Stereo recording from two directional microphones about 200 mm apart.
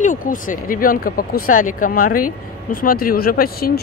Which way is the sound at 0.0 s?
40° left (ahead or behind).